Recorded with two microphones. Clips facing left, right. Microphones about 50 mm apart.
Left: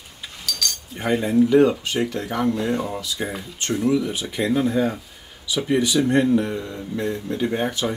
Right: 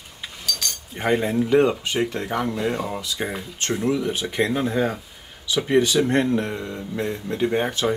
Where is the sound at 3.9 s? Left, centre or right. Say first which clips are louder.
Left 2 dB; right.